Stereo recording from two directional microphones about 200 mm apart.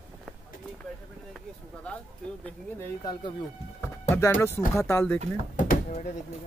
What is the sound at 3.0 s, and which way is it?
A man's voice, 20° left (ahead or behind).